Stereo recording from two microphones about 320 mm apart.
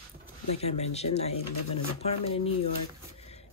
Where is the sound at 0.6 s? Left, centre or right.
Centre.